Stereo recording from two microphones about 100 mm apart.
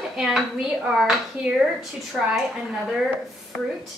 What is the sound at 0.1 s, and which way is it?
A woman's voice, 5° right (ahead or behind).